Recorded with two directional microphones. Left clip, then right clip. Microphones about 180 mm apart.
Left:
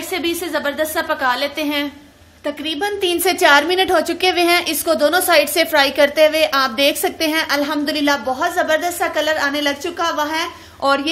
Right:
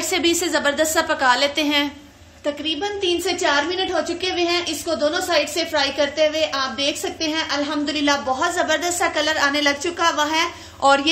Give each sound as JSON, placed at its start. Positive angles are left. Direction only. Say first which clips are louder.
{"t": 0.1, "sound": "a woman's voice", "louder": "right 1 dB", "side_deg": -5}
{"t": 2.4, "sound": "a woman's voice", "louder": "left 2 dB", "side_deg": 25}